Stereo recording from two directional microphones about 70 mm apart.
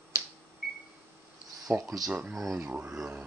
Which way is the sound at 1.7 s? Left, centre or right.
Right.